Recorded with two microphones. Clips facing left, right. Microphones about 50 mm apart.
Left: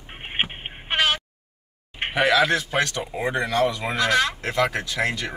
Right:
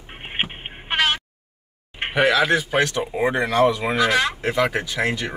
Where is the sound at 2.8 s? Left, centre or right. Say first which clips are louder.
Right 4 dB; centre.